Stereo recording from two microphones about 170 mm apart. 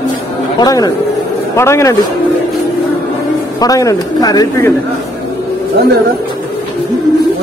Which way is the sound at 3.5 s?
20° left (ahead or behind).